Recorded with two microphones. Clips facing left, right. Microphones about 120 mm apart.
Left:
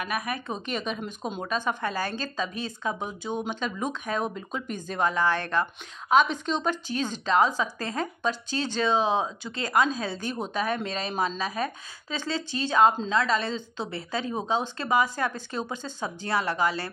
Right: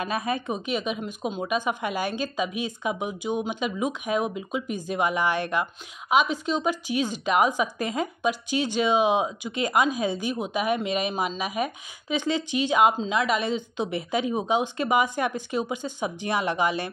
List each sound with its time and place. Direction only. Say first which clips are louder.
0.0 s speech: right 3 dB; 25° right (ahead or behind)
0.6 s speech: right 3 dB; 5° right (ahead or behind)